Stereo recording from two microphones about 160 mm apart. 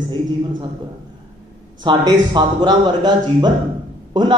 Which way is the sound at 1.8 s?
30° right (ahead or behind).